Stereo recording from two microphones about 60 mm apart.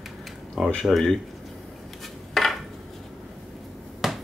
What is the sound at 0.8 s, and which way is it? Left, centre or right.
Speech, centre.